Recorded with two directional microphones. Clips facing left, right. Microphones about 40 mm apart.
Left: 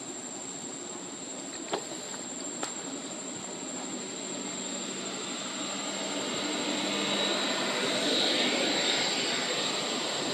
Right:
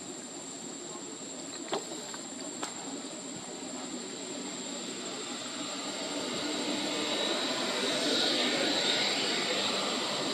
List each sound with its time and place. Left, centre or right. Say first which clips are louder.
6.1 s vacuum cleaner: left 1 dB; left
8.8 s vehicle: left 1 dB; centre